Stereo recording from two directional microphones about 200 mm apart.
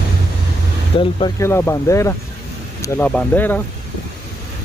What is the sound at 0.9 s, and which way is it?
Speech, 25° left (ahead or behind).